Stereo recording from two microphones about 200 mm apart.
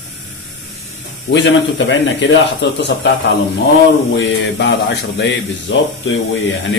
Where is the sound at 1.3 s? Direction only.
65° left (ahead or behind).